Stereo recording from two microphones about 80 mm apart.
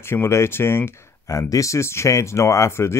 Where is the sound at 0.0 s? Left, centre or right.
Left.